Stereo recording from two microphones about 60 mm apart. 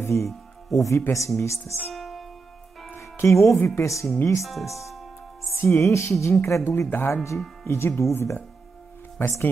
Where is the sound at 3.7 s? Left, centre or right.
Left.